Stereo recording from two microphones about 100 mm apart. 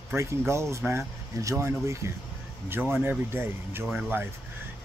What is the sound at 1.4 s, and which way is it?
Speech, 30° right (ahead or behind).